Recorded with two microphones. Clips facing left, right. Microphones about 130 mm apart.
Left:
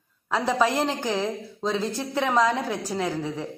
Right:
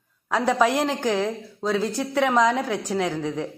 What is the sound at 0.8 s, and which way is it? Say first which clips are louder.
A woman's voice: right 3 dB; 15° left (ahead or behind).